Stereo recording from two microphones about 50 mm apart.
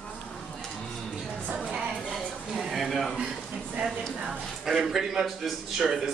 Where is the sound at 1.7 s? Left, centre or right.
Centre.